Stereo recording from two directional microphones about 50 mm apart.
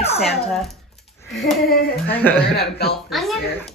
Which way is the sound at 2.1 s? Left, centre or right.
Left.